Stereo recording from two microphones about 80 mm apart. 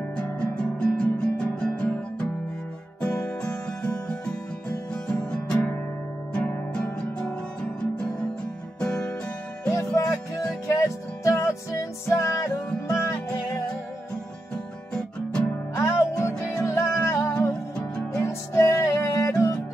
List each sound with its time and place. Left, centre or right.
0.1 s music: centre
6.7 s music: centre
9.7 s music: left
15.0 s music: centre
15.7 s music: left
17.3 s music: centre
18.2 s music: left